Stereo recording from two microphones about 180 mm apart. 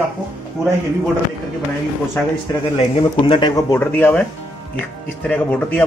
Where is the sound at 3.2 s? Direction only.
25° left (ahead or behind).